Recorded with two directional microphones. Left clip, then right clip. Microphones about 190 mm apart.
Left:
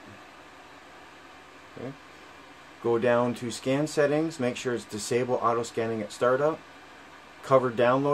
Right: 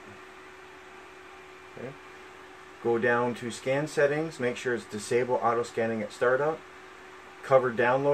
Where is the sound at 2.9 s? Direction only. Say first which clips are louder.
Left 3 dB; 25° left (ahead or behind).